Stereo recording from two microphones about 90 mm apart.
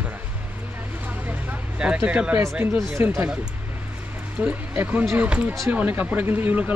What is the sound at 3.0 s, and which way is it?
Speech, 30° right (ahead or behind).